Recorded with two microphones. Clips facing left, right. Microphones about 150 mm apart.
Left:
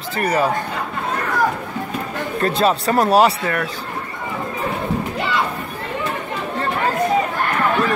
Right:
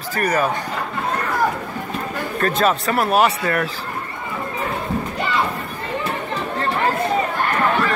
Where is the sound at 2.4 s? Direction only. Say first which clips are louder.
Left 1 dB; 30° left (ahead or behind).